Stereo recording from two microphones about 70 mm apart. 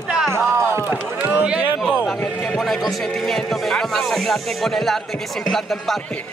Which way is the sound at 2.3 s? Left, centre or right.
Centre.